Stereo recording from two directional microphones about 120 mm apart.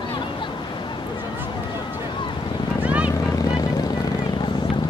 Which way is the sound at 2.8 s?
10° right (ahead or behind).